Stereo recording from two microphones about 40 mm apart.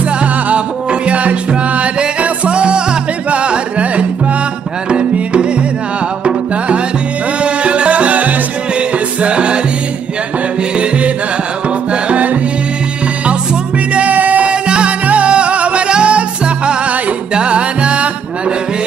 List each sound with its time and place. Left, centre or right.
1.0 s music: right
11.9 s music: right
13.9 s music: right
14.4 s music: right